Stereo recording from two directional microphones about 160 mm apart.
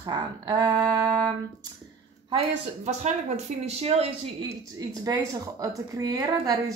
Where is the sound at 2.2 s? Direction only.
40° right (ahead or behind).